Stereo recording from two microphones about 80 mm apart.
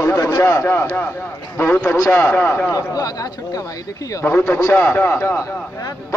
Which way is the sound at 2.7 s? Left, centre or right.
Left.